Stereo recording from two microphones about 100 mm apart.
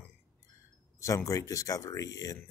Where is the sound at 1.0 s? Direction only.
35° left (ahead or behind).